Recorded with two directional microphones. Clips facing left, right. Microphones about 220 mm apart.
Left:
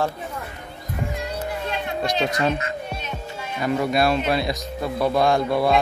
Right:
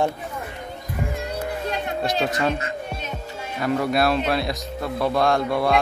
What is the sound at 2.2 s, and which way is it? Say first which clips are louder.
Speech: left 1 dB; centre (ahead or behind).